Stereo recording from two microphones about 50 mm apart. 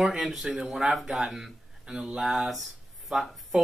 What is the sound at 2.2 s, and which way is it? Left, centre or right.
Speech, centre.